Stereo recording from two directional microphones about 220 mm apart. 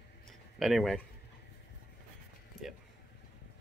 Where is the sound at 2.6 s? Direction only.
Centre (ahead or behind).